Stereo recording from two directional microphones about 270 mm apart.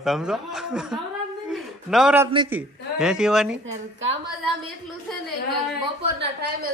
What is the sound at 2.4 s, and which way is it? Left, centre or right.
A woman's voice, centre.